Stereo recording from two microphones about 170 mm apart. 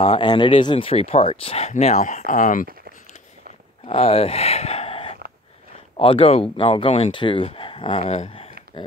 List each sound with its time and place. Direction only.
0.0 s speech: 30° left (ahead or behind); by 2.7 s 50° left (ahead or behind)
3.8 s speech: 35° left (ahead or behind)
8.0 s speech: 40° left (ahead or behind)
8.8 s speech: 25° left (ahead or behind)